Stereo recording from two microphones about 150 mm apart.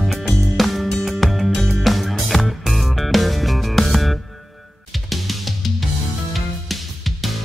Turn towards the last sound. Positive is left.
turn(degrees=0)  # may be behind; listen again after turning